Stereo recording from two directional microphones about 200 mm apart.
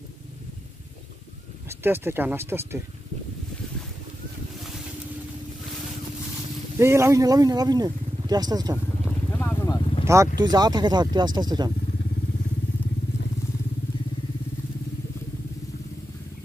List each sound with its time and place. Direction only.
1.7 s speech: 10° right (ahead or behind)
6.8 s speech: 15° right (ahead or behind)
9.3 s vehicle: 10° left (ahead or behind)
10.0 s speech: 15° right (ahead or behind)